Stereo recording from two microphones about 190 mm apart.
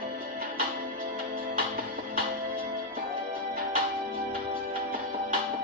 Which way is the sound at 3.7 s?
50° right (ahead or behind).